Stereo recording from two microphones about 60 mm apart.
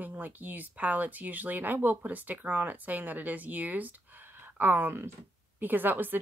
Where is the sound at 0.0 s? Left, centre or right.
Right.